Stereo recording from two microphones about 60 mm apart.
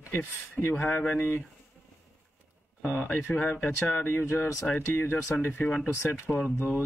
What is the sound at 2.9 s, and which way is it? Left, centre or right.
Speech, left.